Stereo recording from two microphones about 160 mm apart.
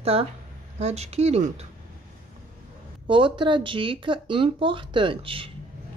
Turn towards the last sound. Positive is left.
turn(degrees=-35)  # may be behind; listen again after turning